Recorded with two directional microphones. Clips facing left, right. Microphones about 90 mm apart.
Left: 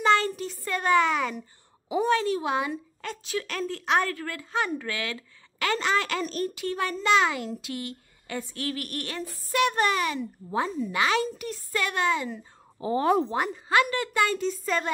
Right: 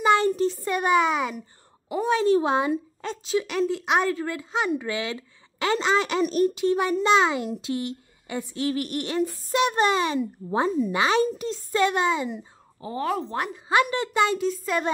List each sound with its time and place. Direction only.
0.0 s a sound: 15° right (ahead or behind)
0.4 s a woman's voice: 20° right (ahead or behind)
12.8 s a woman's voice: 25° left (ahead or behind)
13.7 s a woman's voice: 20° right (ahead or behind)
14.3 s speech: 10° right (ahead or behind)